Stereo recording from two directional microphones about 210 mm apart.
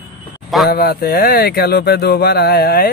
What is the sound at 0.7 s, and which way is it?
Speech, 50° left (ahead or behind).